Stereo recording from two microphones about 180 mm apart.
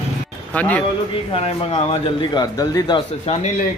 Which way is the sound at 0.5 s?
10° left (ahead or behind).